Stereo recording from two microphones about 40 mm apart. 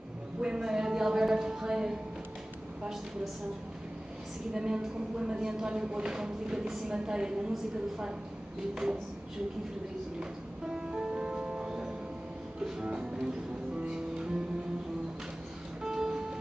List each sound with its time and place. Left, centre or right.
0.4 s a sound: centre
4.6 s a woman's voice: right
10.7 s music: centre
13.0 s a woman's voice: right
13.8 s music: centre
15.8 s music: centre